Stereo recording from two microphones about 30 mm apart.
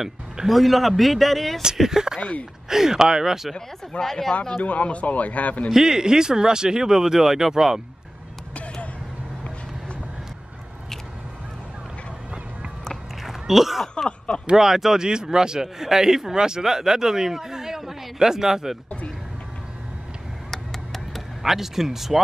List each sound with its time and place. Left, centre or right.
0.5 s speech: centre
1.8 s speech: centre
2.1 s speech: left
2.7 s speech: centre
4.0 s speech: centre
4.6 s speech: left
5.7 s speech: centre
13.2 s a sound: centre
14.0 s speech: left
14.6 s speech: centre
15.0 s a man's voice: right
20.5 s a sound: centre
21.4 s speech: centre